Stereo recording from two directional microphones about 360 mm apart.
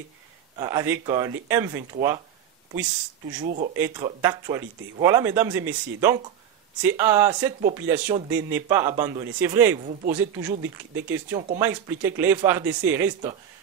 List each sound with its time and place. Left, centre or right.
0.6 s speech: centre
3.7 s speech: centre